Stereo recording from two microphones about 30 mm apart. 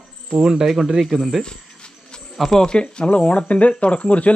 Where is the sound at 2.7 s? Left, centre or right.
Left.